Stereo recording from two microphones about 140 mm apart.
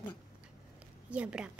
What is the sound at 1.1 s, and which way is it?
Speech, 10° right (ahead or behind).